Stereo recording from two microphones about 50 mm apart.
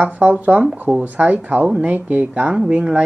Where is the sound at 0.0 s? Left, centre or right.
Right.